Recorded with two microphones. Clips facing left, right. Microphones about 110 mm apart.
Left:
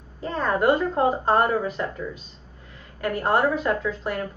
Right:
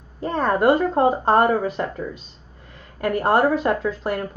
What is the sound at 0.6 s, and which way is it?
A woman's voice, 30° right (ahead or behind).